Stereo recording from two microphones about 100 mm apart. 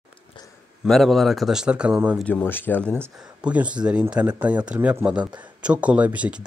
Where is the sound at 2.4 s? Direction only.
20° left (ahead or behind).